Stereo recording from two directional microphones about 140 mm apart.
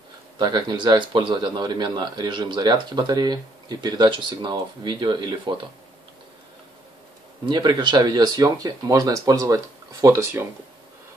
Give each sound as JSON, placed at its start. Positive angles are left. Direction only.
{"t": 0.4, "sound": "speech", "side_deg": -30}
{"t": 7.4, "sound": "speech", "side_deg": -35}